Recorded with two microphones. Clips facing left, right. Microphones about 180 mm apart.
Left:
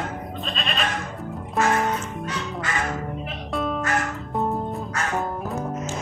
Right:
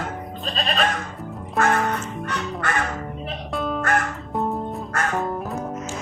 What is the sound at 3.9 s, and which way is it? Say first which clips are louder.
Music: right 5 dB; 55° right (ahead or behind).